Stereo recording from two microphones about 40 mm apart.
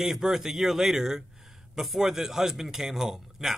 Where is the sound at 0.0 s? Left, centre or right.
Centre.